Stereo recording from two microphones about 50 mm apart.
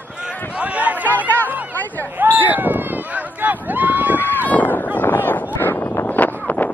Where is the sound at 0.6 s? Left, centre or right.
Right.